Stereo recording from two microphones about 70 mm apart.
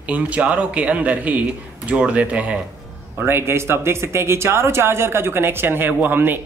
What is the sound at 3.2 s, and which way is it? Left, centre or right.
Speech, right.